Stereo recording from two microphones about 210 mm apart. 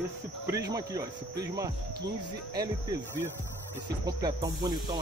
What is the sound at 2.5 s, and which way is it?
Speech, 20° right (ahead or behind).